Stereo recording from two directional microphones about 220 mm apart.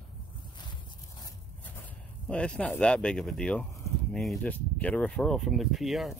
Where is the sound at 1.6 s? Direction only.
5° left (ahead or behind).